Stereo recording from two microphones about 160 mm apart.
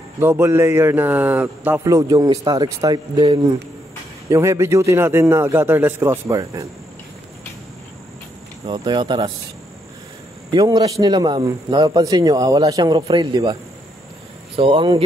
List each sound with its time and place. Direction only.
0.2 s a man's voice: 15° right (ahead or behind)
8.6 s a man's voice: 30° right (ahead or behind)
10.5 s a man's voice: 25° right (ahead or behind)
14.6 s speech: 30° right (ahead or behind)